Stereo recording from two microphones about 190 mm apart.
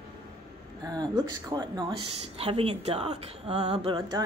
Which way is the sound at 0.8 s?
20° right (ahead or behind).